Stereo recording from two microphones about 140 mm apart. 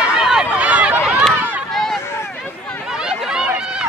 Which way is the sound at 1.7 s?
Centre (ahead or behind).